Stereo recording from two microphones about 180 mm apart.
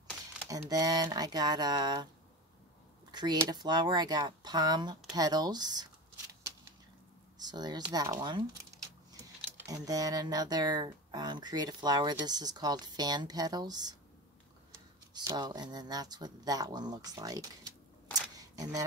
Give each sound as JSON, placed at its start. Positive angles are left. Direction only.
{"t": 0.5, "sound": "speech", "side_deg": -20}
{"t": 3.1, "sound": "a sound", "side_deg": -25}
{"t": 3.3, "sound": "speech", "side_deg": -20}
{"t": 7.3, "sound": "speech", "side_deg": -20}
{"t": 9.6, "sound": "speech", "side_deg": -20}
{"t": 15.1, "sound": "speech", "side_deg": -25}
{"t": 18.4, "sound": "camera", "side_deg": -20}